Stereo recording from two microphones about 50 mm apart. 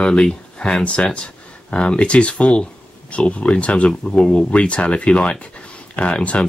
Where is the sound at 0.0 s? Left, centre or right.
Left.